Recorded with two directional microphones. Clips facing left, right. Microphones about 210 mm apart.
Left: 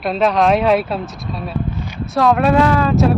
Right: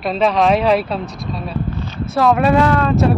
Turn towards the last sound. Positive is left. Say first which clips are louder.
# even
turn(degrees=0)  # may be behind; listen again after turning